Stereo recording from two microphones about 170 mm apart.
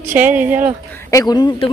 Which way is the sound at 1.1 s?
20° left (ahead or behind).